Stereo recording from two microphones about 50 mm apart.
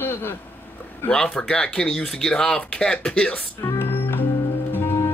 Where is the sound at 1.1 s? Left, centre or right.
Centre.